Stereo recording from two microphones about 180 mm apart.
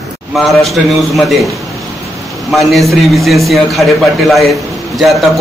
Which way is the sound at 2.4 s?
Centre (ahead or behind).